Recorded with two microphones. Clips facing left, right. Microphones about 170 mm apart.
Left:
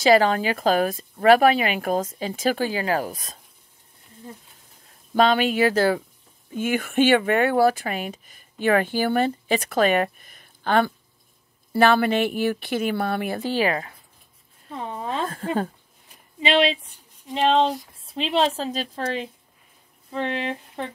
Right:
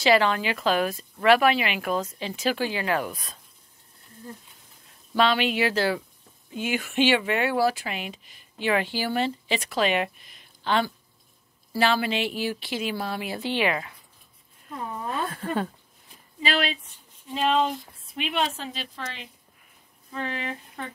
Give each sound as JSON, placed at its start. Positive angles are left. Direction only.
{"t": 0.0, "sound": "speech", "side_deg": 40}
{"t": 5.1, "sound": "speech", "side_deg": 45}
{"t": 15.0, "sound": "a sound", "side_deg": 80}
{"t": 16.3, "sound": "speech", "side_deg": 25}
{"t": 20.1, "sound": "speech", "side_deg": 25}